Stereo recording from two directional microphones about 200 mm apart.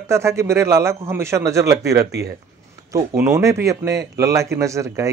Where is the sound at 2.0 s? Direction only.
55° right (ahead or behind).